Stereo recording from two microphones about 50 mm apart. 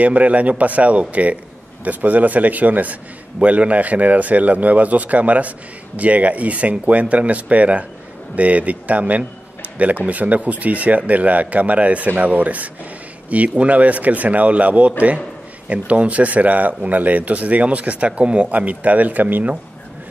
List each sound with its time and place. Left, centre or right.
0.0 s a man's voice: right